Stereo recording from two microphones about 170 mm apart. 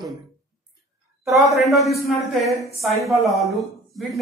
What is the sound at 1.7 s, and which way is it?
Speech, centre (ahead or behind).